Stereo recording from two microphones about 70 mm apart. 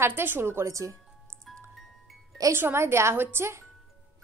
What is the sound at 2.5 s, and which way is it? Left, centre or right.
A woman's voice, right.